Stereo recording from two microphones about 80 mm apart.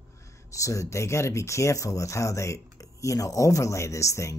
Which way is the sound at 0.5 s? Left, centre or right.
Left.